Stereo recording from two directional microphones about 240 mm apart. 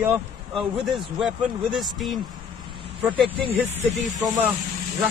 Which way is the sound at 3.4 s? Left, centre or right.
Right.